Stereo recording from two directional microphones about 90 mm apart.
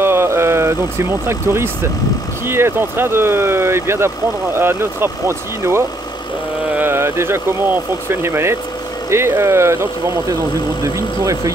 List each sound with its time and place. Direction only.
0.0 s vehicle: 30° right (ahead or behind)
2.4 s speech: 25° right (ahead or behind)